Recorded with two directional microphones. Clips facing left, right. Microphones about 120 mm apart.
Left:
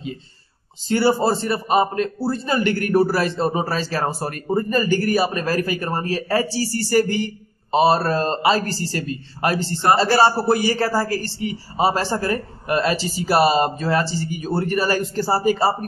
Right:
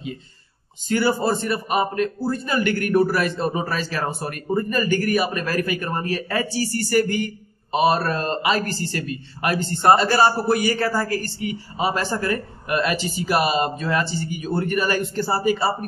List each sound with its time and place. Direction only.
0.8 s a man's voice: 30° left (ahead or behind)